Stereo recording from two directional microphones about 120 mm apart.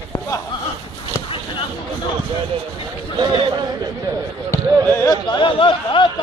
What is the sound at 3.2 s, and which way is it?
Speech, 40° right (ahead or behind).